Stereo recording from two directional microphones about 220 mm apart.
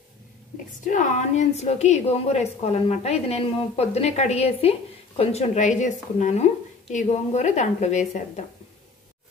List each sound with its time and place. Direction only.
0.8 s a woman's voice: 35° left (ahead or behind)